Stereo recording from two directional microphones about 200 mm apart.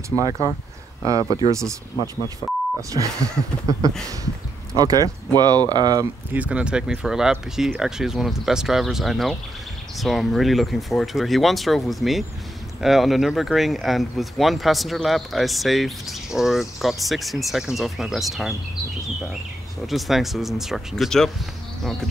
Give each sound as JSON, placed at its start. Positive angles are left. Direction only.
{"t": 0.4, "sound": "speech", "side_deg": -15}
{"t": 2.9, "sound": "speech", "side_deg": -15}
{"t": 6.3, "sound": "speech", "side_deg": -5}
{"t": 19.9, "sound": "speech", "side_deg": 0}